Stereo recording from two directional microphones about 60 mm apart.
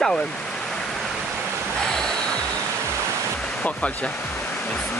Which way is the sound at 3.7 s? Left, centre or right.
Left.